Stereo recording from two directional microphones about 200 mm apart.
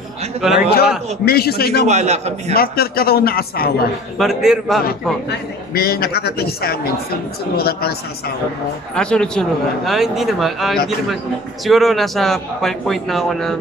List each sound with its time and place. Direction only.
0.6 s a woman's voice: 50° left (ahead or behind)
1.8 s a man's voice: 35° right (ahead or behind)
2.5 s a woman's voice: 50° left (ahead or behind)
4.2 s a man's voice: centre (ahead or behind)
5.8 s a woman's voice: 50° left (ahead or behind)
8.9 s a man's voice: 5° left (ahead or behind)